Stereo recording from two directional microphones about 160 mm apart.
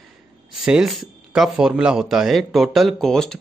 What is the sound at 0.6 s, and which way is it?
Speech, 5° right (ahead or behind).